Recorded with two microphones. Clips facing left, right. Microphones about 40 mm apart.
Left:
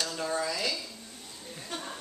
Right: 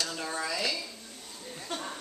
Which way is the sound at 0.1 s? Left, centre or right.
Centre.